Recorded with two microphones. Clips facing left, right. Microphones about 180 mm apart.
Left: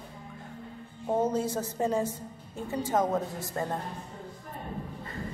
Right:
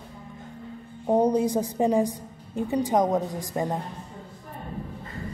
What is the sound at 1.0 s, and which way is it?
A woman's voice, 15° right (ahead or behind).